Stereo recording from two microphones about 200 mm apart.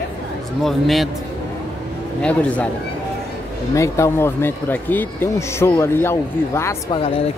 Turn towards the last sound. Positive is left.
turn(degrees=25)  # may be behind; listen again after turning